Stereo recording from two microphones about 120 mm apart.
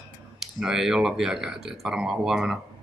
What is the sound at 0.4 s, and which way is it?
Speech, 5° right (ahead or behind).